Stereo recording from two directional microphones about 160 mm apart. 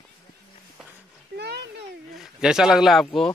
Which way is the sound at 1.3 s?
90° right.